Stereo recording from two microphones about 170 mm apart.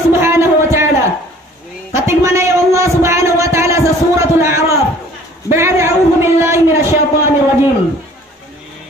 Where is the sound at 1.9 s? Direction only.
15° right (ahead or behind).